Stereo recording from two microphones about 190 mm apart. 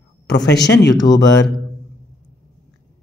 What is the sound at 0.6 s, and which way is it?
Speech, 65° left (ahead or behind).